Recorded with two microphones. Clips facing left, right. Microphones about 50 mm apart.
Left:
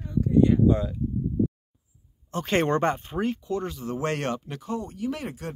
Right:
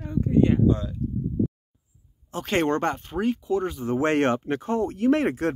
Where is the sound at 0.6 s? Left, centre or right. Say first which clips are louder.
Left 1 dB; centre.